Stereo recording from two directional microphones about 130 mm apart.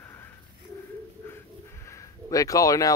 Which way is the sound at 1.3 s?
20° left (ahead or behind).